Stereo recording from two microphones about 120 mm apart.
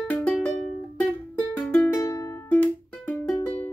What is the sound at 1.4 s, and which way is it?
Music, 10° left (ahead or behind).